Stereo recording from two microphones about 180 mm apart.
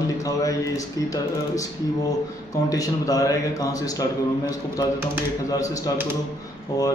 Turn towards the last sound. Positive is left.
turn(degrees=20)  # may be behind; listen again after turning